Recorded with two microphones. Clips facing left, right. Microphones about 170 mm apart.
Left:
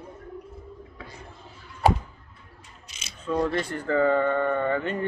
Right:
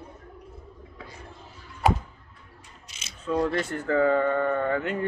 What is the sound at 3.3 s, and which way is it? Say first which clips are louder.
Speech: even; 5° right (ahead or behind).